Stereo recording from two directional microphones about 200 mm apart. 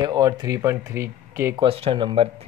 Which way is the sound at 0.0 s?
20° right (ahead or behind).